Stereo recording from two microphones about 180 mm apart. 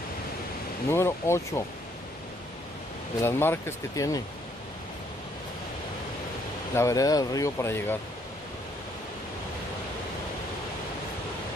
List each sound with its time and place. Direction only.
0.8 s speech: 15° left (ahead or behind)
3.2 s speech: 15° left (ahead or behind)
6.7 s speech: 15° left (ahead or behind)